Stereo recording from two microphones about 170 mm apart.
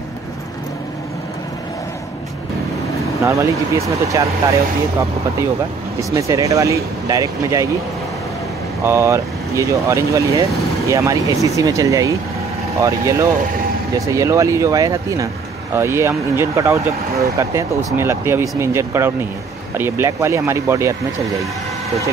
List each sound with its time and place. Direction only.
3.3 s speech: 15° right (ahead or behind)
5.9 s speech: 20° right (ahead or behind)
8.8 s speech: 15° right (ahead or behind)